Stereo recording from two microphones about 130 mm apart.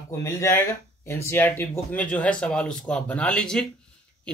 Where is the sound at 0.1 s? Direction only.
20° left (ahead or behind).